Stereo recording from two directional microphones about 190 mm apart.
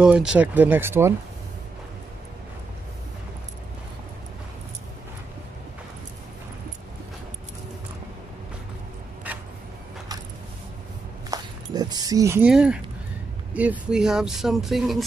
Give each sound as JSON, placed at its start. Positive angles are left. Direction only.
{"t": 0.0, "sound": "speech", "side_deg": -5}
{"t": 11.2, "sound": "a sound", "side_deg": -20}
{"t": 13.5, "sound": "speech", "side_deg": -5}